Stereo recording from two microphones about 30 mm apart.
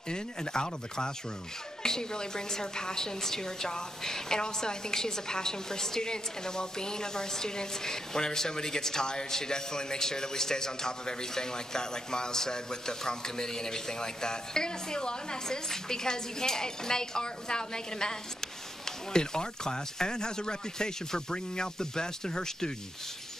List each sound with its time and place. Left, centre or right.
0.1 s a woman's voice: left